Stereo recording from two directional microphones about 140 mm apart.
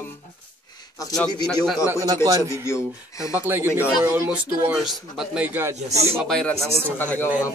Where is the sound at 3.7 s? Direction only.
10° right (ahead or behind).